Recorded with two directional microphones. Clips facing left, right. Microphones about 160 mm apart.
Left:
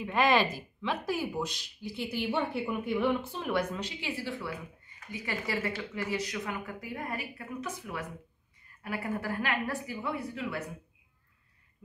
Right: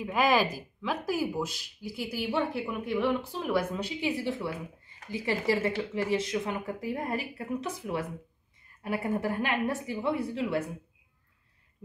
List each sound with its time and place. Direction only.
0.0 s a woman's voice: centre (ahead or behind); by 10.6 s 30° right (ahead or behind)